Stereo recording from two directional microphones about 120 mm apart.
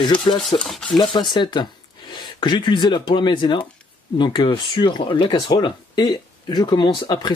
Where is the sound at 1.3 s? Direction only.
40° left (ahead or behind).